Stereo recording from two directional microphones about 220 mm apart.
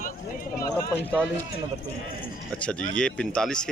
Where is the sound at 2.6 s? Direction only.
5° left (ahead or behind).